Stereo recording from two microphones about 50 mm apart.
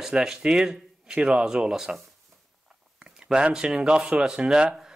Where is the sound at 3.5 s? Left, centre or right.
Centre.